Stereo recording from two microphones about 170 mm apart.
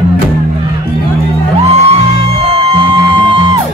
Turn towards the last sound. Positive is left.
turn(degrees=-35)  # may be behind; listen again after turning